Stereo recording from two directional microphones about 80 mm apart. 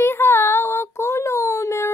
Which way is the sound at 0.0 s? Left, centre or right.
Left.